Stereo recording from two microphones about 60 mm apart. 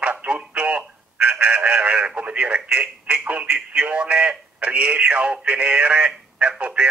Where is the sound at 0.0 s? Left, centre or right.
Right.